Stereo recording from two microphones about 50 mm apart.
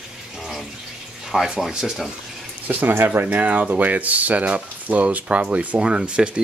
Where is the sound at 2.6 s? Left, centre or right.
Right.